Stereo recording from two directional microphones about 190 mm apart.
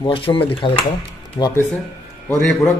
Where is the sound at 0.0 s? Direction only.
25° left (ahead or behind).